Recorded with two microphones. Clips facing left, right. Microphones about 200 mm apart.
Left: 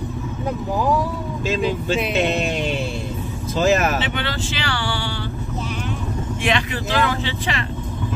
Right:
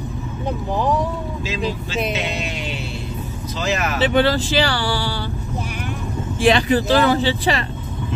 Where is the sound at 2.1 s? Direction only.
50° left (ahead or behind).